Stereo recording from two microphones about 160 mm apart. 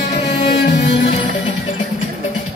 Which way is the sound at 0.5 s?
90° left.